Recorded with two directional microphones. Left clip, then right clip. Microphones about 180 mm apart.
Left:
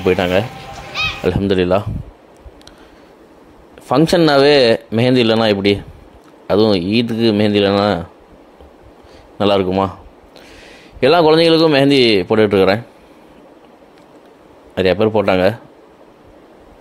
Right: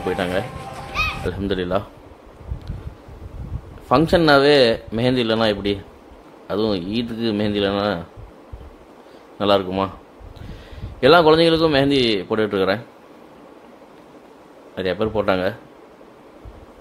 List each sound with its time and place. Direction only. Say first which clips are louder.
0.0 s speech: left 8 dB; 35° left (ahead or behind)
3.9 s speech: left 2 dB; 35° left (ahead or behind)
9.4 s speech: left 4 dB; 35° left (ahead or behind)
11.0 s speech: left 2 dB; 35° left (ahead or behind)
14.8 s speech: left 8 dB; 35° left (ahead or behind)